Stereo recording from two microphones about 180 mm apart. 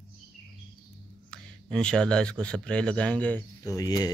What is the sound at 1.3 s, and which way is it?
Speech, 5° left (ahead or behind).